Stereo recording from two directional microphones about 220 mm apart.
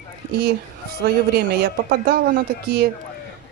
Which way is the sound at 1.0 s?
45° right (ahead or behind).